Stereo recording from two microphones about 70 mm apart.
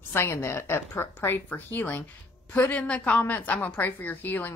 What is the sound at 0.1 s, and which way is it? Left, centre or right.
A woman's voice, left.